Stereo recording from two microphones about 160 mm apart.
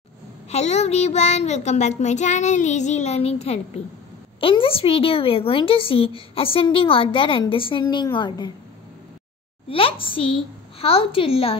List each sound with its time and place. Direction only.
0.5 s a child's voice: 45° left (ahead or behind); by 8.5 s 30° left (ahead or behind)
9.7 s a woman's voice: 35° left (ahead or behind)